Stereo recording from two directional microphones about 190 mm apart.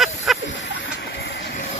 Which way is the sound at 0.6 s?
65° left (ahead or behind).